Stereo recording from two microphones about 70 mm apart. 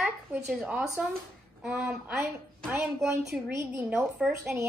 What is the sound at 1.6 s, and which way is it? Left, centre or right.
Speech, centre.